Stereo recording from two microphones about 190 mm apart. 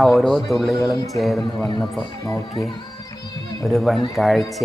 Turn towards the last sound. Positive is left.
turn(degrees=0)  # may be behind; listen again after turning